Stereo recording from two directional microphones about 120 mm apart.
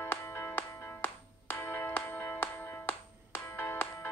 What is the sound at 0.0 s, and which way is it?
Music, 20° left (ahead or behind).